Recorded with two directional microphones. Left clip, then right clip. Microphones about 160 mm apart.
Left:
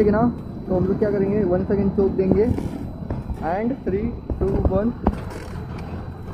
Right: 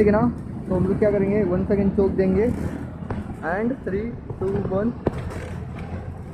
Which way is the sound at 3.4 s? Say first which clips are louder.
Left 1 dB; 20° right (ahead or behind).